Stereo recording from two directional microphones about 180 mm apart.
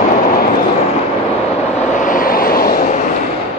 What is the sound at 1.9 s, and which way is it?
Vehicle, 45° left (ahead or behind).